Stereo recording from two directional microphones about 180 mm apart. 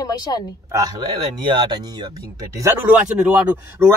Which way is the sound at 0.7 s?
20° right (ahead or behind).